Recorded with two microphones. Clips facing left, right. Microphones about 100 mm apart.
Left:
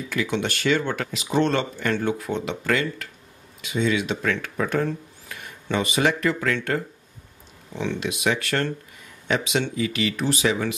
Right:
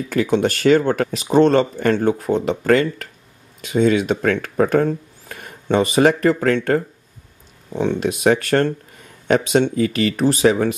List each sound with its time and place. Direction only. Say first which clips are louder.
0.1 s speech: right 8 dB; 45° right (ahead or behind)